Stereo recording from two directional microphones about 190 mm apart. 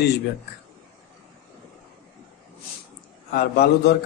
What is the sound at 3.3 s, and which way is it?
Speech, 55° left (ahead or behind).